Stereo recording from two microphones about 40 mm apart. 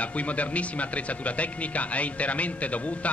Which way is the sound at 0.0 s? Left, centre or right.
Left.